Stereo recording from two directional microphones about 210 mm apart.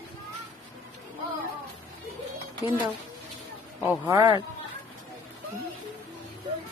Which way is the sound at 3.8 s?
5° right (ahead or behind).